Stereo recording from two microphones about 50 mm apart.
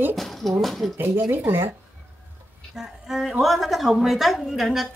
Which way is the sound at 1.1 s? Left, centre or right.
Right.